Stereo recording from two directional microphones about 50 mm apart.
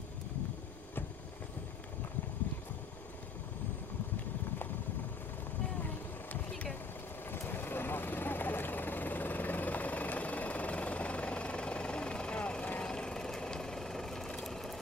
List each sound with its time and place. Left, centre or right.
7.2 s vehicle: left; by 14.8 s centre